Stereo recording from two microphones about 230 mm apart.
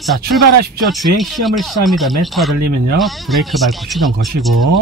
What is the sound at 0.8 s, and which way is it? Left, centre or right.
Speech, centre.